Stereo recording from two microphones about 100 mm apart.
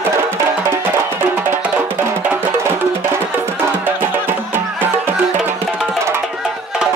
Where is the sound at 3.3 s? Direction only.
25° right (ahead or behind).